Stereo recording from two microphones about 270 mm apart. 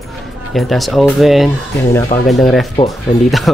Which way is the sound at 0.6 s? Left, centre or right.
Centre.